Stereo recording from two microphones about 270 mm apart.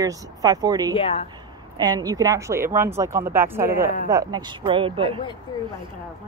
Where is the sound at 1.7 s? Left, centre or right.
Centre.